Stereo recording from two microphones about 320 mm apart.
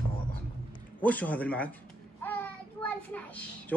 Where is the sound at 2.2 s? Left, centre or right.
Centre.